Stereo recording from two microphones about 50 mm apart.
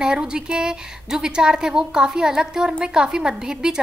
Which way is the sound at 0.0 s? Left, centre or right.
Centre.